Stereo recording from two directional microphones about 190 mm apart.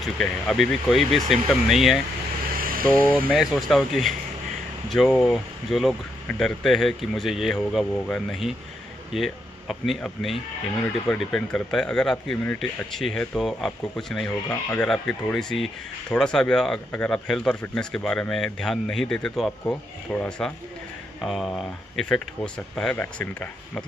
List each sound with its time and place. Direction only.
0.0 s speech: centre (ahead or behind)
2.6 s vehicle: 50° right (ahead or behind)
3.1 s speech: 5° left (ahead or behind)